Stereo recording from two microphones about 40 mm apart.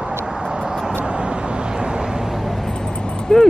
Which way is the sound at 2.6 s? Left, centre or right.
Centre.